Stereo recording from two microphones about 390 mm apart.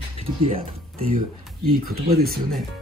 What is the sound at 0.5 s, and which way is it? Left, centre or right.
Speech, centre.